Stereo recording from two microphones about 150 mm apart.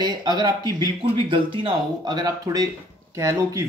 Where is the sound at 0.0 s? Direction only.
30° right (ahead or behind).